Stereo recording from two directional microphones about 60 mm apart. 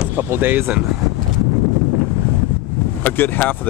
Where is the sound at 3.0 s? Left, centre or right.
Left.